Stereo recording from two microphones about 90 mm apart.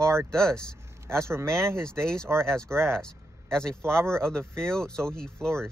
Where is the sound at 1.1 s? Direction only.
30° right (ahead or behind).